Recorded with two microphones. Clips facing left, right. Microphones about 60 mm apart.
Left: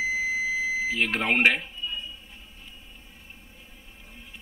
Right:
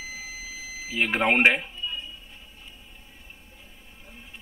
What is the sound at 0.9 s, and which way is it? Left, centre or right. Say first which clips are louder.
Speech: right 5 dB; centre.